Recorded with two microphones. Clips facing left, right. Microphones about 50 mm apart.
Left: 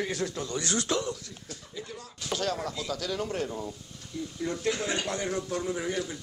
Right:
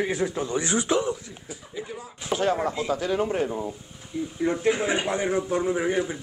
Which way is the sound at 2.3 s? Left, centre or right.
Right.